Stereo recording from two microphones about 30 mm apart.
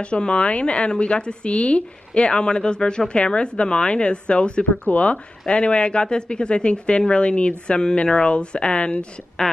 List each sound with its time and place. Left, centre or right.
0.0 s speech: left
4.9 s speech: left
5.5 s speech: left
9.4 s a woman's voice: left